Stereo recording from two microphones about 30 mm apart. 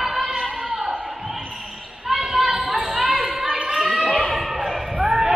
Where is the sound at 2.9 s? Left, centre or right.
Centre.